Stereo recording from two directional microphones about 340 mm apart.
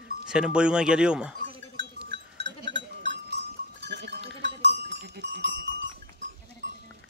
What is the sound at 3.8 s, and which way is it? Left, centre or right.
Livestock, right.